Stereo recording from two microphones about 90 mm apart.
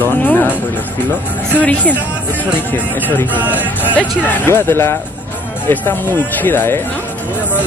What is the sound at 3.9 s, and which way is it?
Speech, 20° left (ahead or behind).